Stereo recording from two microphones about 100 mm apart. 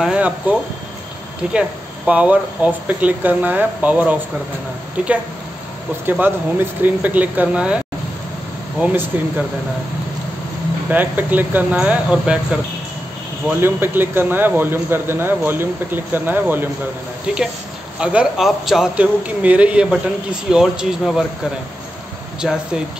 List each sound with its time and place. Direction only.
0.0 s speech: 10° right (ahead or behind)
9.1 s speech: 20° right (ahead or behind)
10.9 s speech: 20° right (ahead or behind)
17.9 s speech: 10° right (ahead or behind)
22.4 s speech: 10° right (ahead or behind)